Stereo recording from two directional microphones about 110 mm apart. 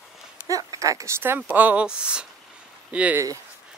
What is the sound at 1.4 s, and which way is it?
Speech, 15° right (ahead or behind).